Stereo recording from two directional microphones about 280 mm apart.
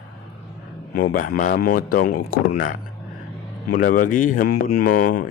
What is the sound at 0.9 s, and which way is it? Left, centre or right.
Speech, left.